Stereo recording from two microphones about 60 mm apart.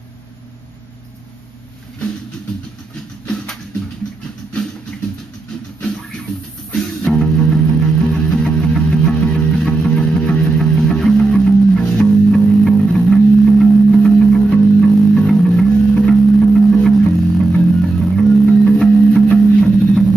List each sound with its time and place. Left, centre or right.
6.7 s music: centre